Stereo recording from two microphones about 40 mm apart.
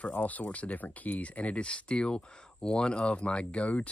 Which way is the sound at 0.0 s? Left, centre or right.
Left.